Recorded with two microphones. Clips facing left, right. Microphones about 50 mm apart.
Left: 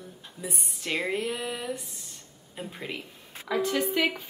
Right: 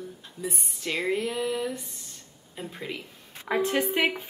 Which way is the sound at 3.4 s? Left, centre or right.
Right.